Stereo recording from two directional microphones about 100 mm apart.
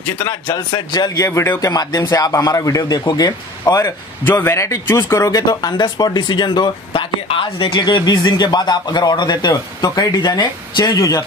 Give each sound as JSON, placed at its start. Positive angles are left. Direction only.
{"t": 0.5, "sound": "speech", "side_deg": 45}
{"t": 1.7, "sound": "speech", "side_deg": 40}
{"t": 3.8, "sound": "a man's voice", "side_deg": 25}